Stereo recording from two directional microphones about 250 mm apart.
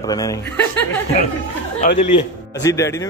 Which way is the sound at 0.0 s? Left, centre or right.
Centre.